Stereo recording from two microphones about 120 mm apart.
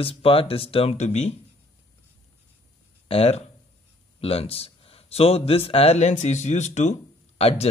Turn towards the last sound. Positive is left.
turn(degrees=60)  # may be behind; listen again after turning